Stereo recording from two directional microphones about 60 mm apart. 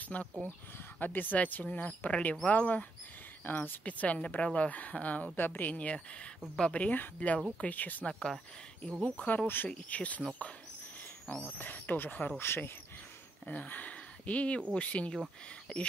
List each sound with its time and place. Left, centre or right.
0.1 s speech: left
8.1 s speech: centre
9.0 s speech: left
11.5 s speech: left
12.4 s speech: left
13.5 s speech: left